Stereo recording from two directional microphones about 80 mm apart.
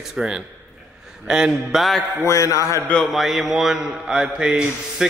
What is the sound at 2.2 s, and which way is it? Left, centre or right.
Speech, left.